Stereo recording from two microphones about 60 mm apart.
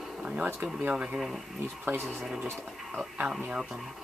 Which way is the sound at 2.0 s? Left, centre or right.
Centre.